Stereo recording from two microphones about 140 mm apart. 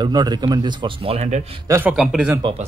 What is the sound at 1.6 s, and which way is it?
Speech, 20° right (ahead or behind).